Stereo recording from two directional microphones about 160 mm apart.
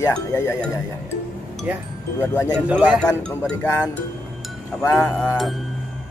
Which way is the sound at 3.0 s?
15° left (ahead or behind).